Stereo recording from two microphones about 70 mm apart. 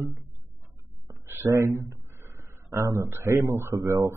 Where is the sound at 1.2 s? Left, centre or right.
Right.